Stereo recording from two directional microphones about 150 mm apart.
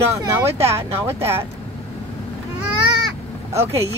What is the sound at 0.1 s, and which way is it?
A woman's voice, 20° right (ahead or behind).